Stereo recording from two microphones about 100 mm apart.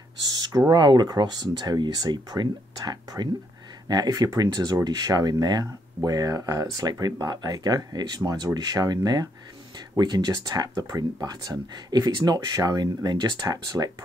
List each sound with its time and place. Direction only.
0.5 s speech: 35° right (ahead or behind)